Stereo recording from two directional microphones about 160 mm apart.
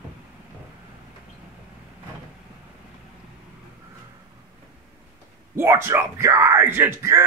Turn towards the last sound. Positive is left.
turn(degrees=-15)  # may be behind; listen again after turning